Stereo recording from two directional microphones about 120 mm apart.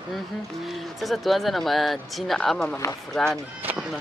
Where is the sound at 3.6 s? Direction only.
15° right (ahead or behind).